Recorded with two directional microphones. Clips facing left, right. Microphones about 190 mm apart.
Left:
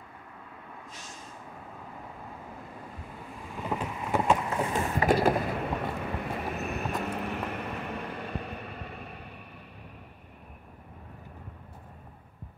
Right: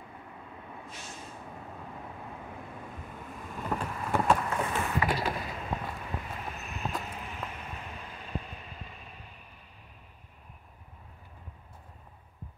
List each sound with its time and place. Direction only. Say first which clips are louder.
3.4 s vehicle: left 1 dB; 10° left (ahead or behind)
4.7 s boat: left 8 dB; 40° left (ahead or behind); by 9.2 s 65° left (ahead or behind)